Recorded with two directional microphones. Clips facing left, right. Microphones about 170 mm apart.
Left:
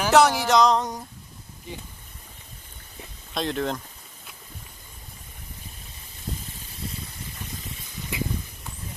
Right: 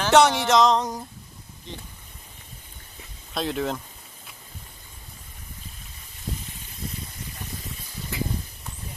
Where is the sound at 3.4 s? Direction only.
5° right (ahead or behind).